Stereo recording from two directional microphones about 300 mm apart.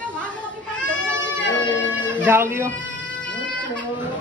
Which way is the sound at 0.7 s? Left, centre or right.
Centre.